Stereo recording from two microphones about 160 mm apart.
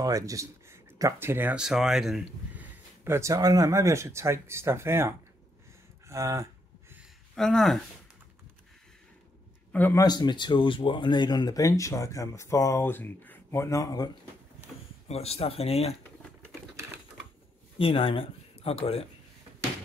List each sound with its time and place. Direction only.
0.0 s speech: 20° right (ahead or behind)
6.0 s a sound: 20° right (ahead or behind)
7.0 s a sound: 5° left (ahead or behind)
9.7 s speech: 10° left (ahead or behind)
10.0 s speech: 25° left (ahead or behind)
15.0 s speech: 40° left (ahead or behind)
17.7 s speech: 35° left (ahead or behind)